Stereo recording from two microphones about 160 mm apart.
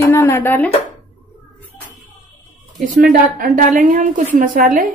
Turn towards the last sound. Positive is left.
turn(degrees=-60)  # may be behind; listen again after turning